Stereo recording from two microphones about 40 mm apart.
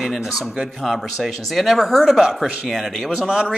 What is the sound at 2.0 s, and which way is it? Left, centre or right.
Speech, centre.